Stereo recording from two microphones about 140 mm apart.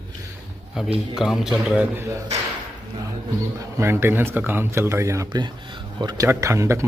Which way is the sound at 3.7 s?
20° right (ahead or behind).